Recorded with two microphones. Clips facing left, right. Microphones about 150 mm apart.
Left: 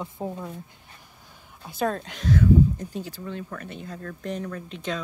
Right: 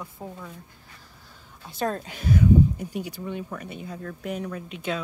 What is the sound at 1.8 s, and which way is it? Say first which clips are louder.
Speech: left 1 dB; 5° right (ahead or behind).